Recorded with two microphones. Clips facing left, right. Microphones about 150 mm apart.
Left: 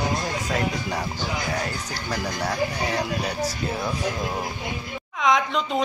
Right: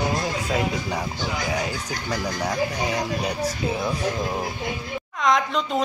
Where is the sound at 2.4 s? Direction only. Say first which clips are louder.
Even; 10° right (ahead or behind).